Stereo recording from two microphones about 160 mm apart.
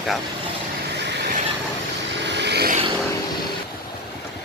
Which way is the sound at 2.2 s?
90° right.